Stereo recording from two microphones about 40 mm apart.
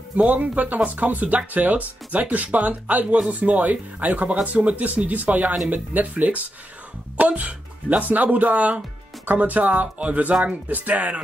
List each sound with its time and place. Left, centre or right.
0.2 s speech: right